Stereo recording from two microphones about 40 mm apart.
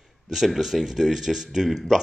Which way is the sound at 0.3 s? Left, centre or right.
Centre.